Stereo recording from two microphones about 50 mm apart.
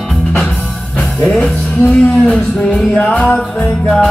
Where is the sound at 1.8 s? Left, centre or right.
Left.